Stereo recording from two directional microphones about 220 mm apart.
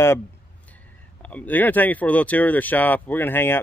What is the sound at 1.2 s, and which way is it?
Speech, 5° left (ahead or behind).